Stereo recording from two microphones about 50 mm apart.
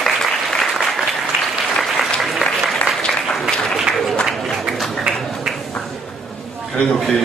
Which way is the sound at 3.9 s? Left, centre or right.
Centre.